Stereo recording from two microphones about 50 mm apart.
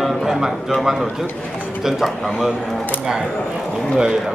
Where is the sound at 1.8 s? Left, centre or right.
Centre.